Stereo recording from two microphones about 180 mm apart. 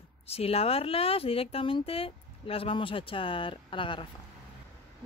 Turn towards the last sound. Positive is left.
turn(degrees=30)  # may be behind; listen again after turning